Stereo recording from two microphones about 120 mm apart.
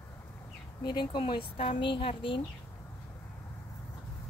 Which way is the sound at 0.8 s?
40° left (ahead or behind).